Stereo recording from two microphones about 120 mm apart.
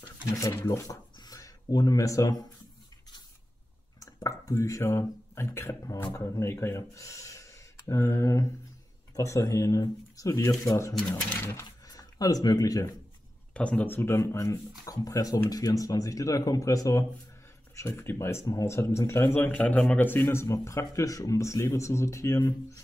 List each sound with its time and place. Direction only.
0.0 s speech: 30° left (ahead or behind)
1.1 s a sound: 30° left (ahead or behind)
4.0 s speech: 30° left (ahead or behind)
11.1 s speech: 15° left (ahead or behind)
11.6 s a sound: 30° left (ahead or behind)
13.5 s speech: 10° left (ahead or behind)